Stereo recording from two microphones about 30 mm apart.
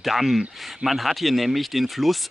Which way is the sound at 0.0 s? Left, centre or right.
Centre.